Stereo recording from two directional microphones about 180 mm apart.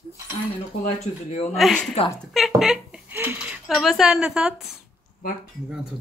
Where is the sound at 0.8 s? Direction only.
40° left (ahead or behind).